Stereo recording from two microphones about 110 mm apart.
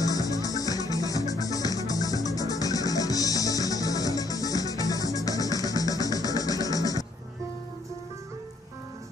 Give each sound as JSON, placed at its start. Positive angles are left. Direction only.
{"t": 0.0, "sound": "music", "side_deg": 30}